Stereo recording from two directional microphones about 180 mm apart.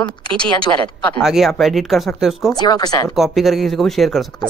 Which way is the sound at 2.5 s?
20° left (ahead or behind).